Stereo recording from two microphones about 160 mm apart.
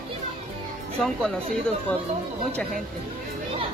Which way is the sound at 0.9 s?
5° left (ahead or behind).